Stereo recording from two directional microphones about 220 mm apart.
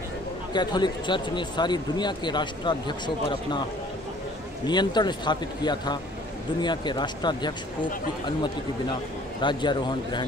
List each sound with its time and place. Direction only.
0.5 s speech: 20° left (ahead or behind)
4.6 s speech: 20° left (ahead or behind)
9.4 s speech: 20° left (ahead or behind)